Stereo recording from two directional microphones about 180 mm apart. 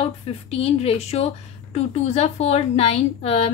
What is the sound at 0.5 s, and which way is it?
Speech, 35° left (ahead or behind).